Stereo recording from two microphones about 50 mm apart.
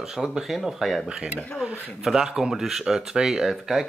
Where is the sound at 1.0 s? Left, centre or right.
Centre.